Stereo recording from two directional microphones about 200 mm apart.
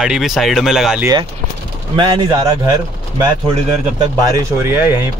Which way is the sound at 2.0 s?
20° right (ahead or behind).